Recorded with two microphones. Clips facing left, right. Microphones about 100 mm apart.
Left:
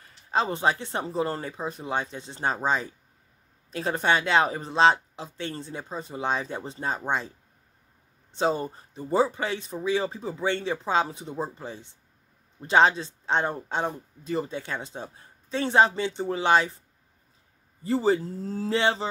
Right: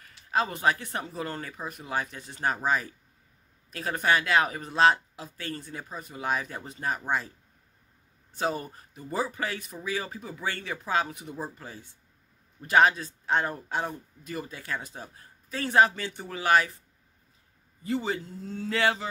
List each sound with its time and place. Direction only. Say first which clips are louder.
0.3 s speech: left 2 dB; 25° left (ahead or behind)
8.4 s speech: left 5 dB; 25° left (ahead or behind)
17.8 s speech: left 7 dB; 35° left (ahead or behind)
18.8 s speech: left 1 dB; 25° left (ahead or behind)